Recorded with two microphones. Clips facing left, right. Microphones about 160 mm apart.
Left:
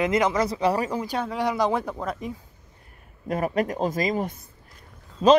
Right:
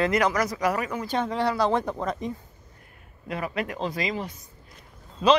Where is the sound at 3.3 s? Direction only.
45° left (ahead or behind).